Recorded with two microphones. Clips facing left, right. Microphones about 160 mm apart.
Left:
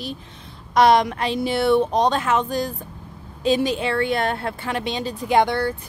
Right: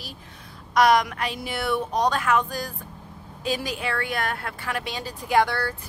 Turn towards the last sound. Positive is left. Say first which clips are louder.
# left 4 dB
turn(degrees=20)  # may be behind; listen again after turning